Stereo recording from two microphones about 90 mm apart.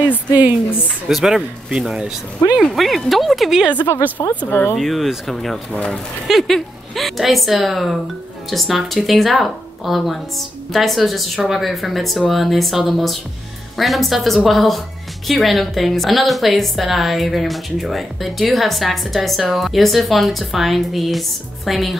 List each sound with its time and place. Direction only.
0.3 s a sound: 20° right (ahead or behind)
1.0 s a woman's voice: 5° right (ahead or behind)
3.8 s speech: 30° left (ahead or behind)
4.7 s a woman's voice: centre (ahead or behind)